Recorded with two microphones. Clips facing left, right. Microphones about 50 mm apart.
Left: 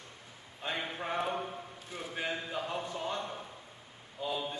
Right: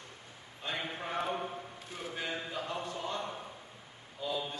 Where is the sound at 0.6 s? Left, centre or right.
Centre.